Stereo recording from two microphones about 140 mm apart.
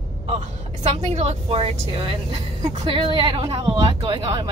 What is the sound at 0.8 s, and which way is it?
A woman's voice, 50° right (ahead or behind).